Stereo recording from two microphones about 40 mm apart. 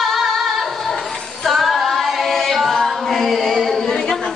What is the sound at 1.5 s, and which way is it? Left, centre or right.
A capella, centre.